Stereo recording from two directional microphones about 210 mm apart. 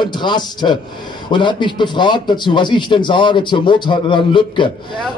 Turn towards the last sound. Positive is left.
turn(degrees=20)  # may be behind; listen again after turning